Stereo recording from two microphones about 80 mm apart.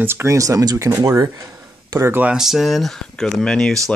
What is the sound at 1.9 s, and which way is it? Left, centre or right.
Speech, right.